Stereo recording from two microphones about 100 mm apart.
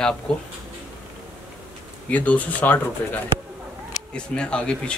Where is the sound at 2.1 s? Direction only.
15° left (ahead or behind).